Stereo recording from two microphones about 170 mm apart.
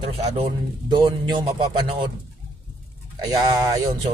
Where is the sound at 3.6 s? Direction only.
25° right (ahead or behind).